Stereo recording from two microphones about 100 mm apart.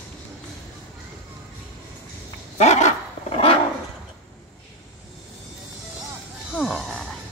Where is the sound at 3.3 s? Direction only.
75° left (ahead or behind).